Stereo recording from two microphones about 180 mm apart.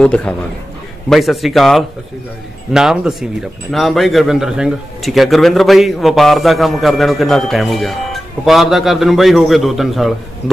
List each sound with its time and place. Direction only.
0.0 s a man's voice: 5° left (ahead or behind)